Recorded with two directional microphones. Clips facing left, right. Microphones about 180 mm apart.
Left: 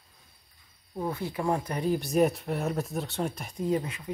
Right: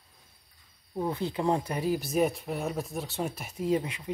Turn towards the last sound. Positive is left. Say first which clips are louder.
# right 1 dB
turn(degrees=-20)  # may be behind; listen again after turning